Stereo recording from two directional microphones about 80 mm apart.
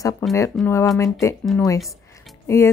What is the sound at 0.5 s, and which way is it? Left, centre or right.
Speech, centre.